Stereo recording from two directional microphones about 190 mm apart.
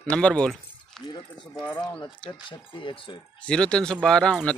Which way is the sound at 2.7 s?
25° left (ahead or behind).